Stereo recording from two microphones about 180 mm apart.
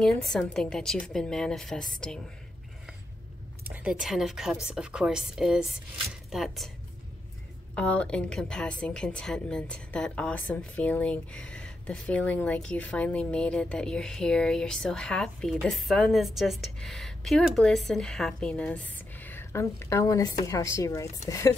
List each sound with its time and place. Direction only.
0.0 s a woman's voice: 5° left (ahead or behind)
3.6 s a woman's voice: 5° right (ahead or behind)
7.7 s a woman's voice: 5° left (ahead or behind)